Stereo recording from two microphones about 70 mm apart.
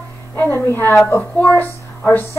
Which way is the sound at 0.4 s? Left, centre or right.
Left.